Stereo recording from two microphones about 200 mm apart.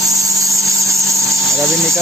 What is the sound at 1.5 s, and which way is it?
Engine, centre (ahead or behind).